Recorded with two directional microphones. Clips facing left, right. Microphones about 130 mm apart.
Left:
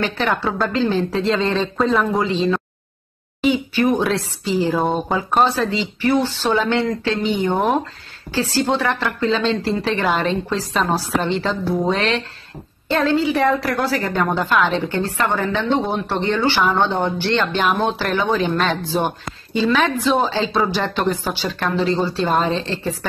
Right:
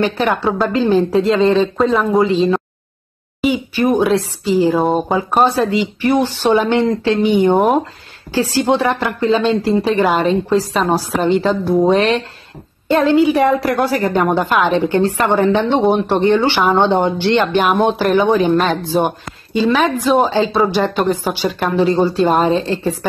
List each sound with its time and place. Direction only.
0.0 s speech: 15° right (ahead or behind)
2.3 s a woman's voice: 40° right (ahead or behind)
3.3 s a sound: 10° right (ahead or behind)
3.8 s speech: 5° right (ahead or behind)
4.2 s a woman's voice: 40° right (ahead or behind)
4.6 s speech: centre (ahead or behind)
5.0 s speech: 15° right (ahead or behind)
8.6 s a woman's voice: 15° right (ahead or behind)